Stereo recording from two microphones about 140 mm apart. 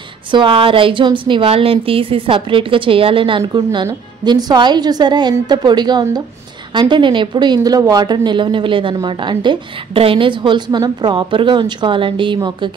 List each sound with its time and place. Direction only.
0.3 s speech: 35° right (ahead or behind)